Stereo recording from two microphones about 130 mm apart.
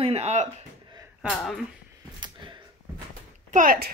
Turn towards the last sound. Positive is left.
turn(degrees=-90)